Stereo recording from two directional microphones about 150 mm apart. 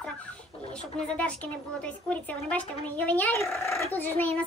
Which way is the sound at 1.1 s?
10° left (ahead or behind).